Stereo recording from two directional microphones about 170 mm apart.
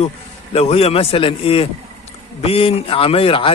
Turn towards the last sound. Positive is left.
turn(degrees=30)  # may be behind; listen again after turning